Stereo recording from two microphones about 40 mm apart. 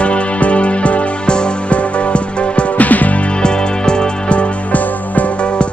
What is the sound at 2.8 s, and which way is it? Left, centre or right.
Music, left.